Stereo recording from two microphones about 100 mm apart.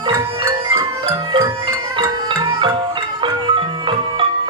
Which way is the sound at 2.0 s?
55° right (ahead or behind).